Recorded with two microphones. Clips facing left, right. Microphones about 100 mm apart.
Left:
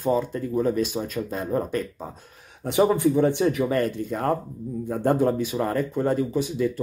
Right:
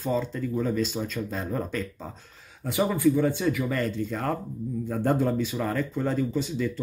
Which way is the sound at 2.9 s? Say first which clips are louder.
Left 2 dB; 25° left (ahead or behind).